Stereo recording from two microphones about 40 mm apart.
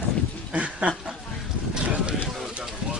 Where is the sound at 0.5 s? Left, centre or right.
Right.